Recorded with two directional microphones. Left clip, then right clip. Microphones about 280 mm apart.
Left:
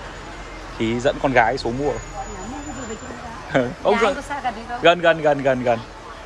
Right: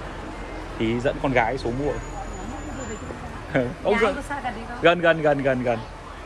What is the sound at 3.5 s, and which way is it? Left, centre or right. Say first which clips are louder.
Speech: left 4 dB; centre.